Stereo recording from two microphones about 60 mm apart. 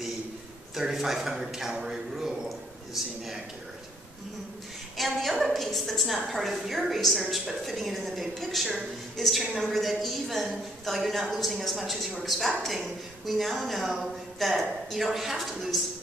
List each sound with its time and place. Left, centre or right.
0.7 s a man's voice: centre
4.9 s a woman's voice: centre